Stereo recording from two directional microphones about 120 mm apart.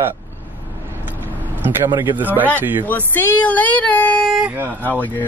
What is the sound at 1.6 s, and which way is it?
Speech, 15° right (ahead or behind).